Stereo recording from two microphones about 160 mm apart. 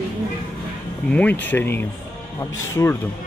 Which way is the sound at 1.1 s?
10° left (ahead or behind).